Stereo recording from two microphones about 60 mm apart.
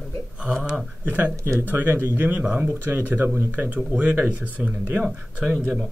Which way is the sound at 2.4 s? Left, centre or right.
Centre.